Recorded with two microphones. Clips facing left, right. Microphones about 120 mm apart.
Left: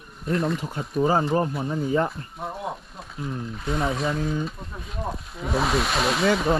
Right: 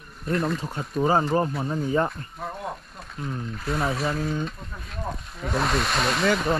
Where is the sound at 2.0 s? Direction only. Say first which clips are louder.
Left 1 dB; 5° left (ahead or behind).